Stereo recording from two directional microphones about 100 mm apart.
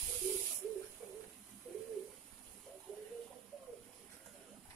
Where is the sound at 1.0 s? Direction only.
10° right (ahead or behind).